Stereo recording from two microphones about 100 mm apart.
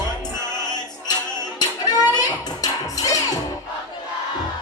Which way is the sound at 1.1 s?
40° left (ahead or behind).